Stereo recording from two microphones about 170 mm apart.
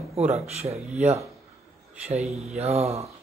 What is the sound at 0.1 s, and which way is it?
Speech, 40° right (ahead or behind).